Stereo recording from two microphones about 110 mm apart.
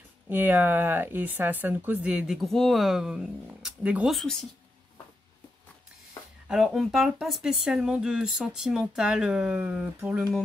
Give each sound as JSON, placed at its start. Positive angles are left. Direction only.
{"t": 0.3, "sound": "speech", "side_deg": -15}
{"t": 2.0, "sound": "speech", "side_deg": -5}
{"t": 4.1, "sound": "speech", "side_deg": 5}
{"t": 6.4, "sound": "speech", "side_deg": -5}